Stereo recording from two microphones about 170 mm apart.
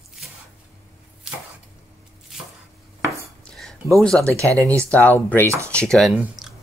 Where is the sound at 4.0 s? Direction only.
5° left (ahead or behind).